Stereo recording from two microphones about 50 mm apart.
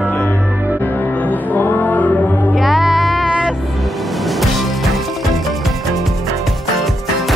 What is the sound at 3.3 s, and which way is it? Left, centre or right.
Music, centre.